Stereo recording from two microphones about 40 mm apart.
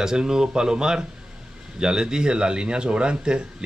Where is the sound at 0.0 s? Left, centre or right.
Centre.